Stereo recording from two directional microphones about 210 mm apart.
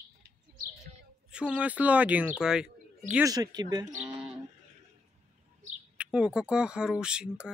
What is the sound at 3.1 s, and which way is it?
Speech, 15° right (ahead or behind).